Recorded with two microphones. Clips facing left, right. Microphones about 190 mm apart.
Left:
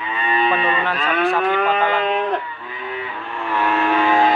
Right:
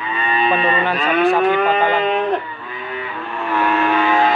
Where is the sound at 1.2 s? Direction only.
5° right (ahead or behind).